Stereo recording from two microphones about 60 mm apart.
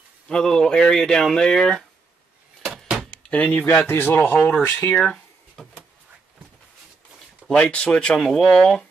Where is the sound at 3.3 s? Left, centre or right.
Left.